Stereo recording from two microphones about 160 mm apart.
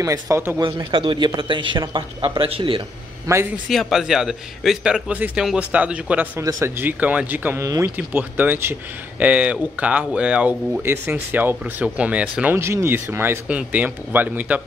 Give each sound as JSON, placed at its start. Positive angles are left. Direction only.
{"t": 0.0, "sound": "speech", "side_deg": -20}
{"t": 0.6, "sound": "a man's voice", "side_deg": -30}
{"t": 3.3, "sound": "speech", "side_deg": -20}
{"t": 3.6, "sound": "speech", "side_deg": 0}